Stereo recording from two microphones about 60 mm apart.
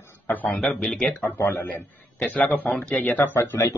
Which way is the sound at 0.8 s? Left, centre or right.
Centre.